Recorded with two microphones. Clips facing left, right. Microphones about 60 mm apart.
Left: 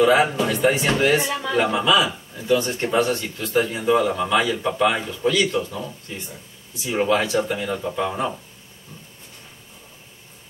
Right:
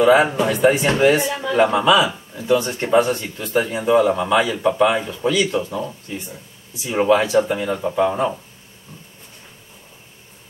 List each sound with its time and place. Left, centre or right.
0.0 s speech: right
1.7 s speech: centre
7.0 s speech: centre